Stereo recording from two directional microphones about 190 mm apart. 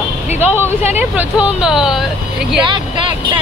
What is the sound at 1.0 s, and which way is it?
Speech, 10° right (ahead or behind).